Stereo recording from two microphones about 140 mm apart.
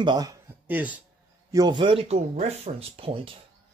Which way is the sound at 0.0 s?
30° right (ahead or behind).